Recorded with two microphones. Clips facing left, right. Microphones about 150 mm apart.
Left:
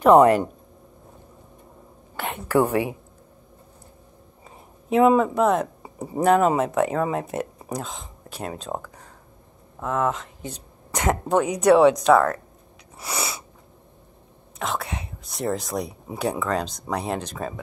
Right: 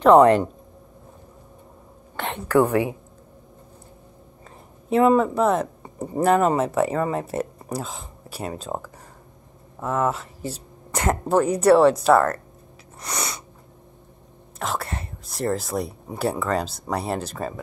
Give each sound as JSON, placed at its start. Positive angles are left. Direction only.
{"t": 0.0, "sound": "speech", "side_deg": 10}
{"t": 2.1, "sound": "a woman's voice", "side_deg": 10}
{"t": 2.5, "sound": "a woman's voice", "side_deg": 20}
{"t": 4.8, "sound": "speech", "side_deg": 5}
{"t": 13.0, "sound": "sneeze", "side_deg": 5}
{"t": 14.6, "sound": "speech", "side_deg": 0}